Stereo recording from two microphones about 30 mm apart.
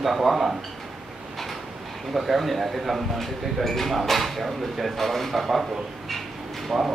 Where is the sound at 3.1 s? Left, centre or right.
Centre.